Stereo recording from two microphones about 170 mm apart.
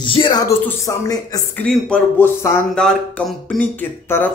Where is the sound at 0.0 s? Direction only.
30° left (ahead or behind).